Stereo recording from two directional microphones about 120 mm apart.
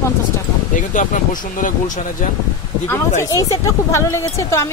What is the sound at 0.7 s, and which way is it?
Speech, 90° left.